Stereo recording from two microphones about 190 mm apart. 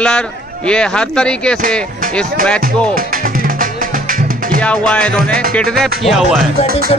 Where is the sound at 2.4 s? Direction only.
50° right (ahead or behind).